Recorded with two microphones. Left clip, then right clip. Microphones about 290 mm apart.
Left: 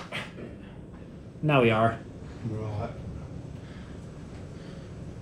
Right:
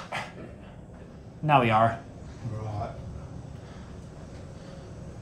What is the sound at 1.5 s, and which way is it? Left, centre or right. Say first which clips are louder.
Speech: right 1 dB; centre.